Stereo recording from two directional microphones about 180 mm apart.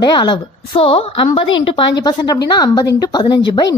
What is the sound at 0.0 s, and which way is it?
A woman's voice, 25° left (ahead or behind).